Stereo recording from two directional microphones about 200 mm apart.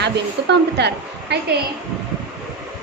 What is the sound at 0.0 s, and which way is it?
A woman's voice, 55° right (ahead or behind).